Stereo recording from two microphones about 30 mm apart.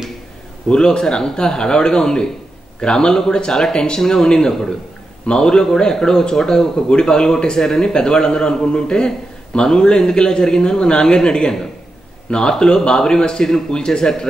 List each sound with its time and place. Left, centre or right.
0.7 s a man's voice: left
4.0 s a man's voice: centre